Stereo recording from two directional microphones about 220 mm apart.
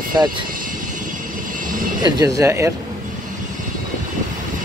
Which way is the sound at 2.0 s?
20° right (ahead or behind).